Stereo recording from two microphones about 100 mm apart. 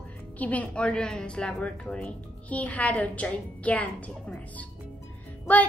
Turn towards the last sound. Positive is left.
turn(degrees=15)  # may be behind; listen again after turning